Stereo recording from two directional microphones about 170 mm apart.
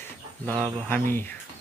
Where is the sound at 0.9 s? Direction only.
10° left (ahead or behind).